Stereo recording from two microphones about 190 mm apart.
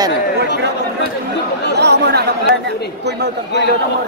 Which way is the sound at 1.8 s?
60° right (ahead or behind).